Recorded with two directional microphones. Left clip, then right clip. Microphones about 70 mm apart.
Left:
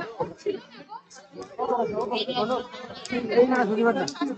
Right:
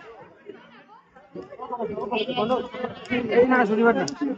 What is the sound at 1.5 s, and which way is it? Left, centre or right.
Speech, left.